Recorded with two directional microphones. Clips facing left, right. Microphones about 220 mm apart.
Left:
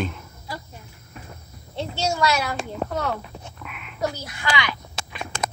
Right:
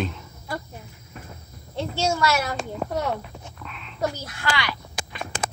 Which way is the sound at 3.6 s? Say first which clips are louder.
Even; 10° left (ahead or behind).